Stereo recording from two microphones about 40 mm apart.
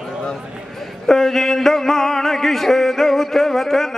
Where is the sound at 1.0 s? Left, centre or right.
Centre.